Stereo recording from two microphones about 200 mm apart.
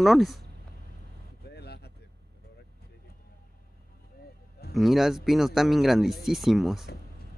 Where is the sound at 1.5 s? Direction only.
55° left (ahead or behind).